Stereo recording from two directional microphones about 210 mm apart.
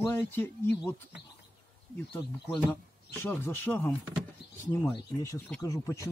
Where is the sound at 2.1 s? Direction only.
10° left (ahead or behind).